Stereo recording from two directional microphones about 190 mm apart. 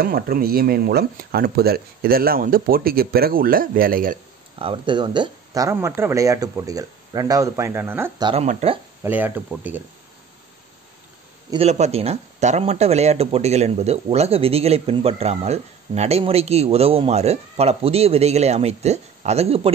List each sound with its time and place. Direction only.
0.0 s speech: 50° right (ahead or behind)
4.6 s speech: 25° right (ahead or behind); by 8.1 s 10° right (ahead or behind)
8.2 s speech: 25° right (ahead or behind)
9.0 s speech: 10° right (ahead or behind)
11.5 s speech: 35° right (ahead or behind)